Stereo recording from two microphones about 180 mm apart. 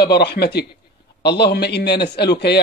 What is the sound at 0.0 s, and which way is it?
A man's voice, 70° left (ahead or behind).